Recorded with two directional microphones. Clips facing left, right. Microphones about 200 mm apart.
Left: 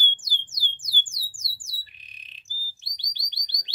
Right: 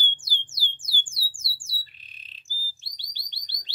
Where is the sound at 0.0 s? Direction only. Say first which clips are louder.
Even; 15° left (ahead or behind).